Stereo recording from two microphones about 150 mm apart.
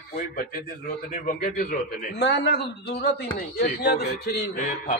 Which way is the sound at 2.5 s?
90° left.